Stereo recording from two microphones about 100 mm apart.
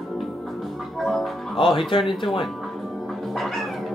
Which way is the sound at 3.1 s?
Centre (ahead or behind).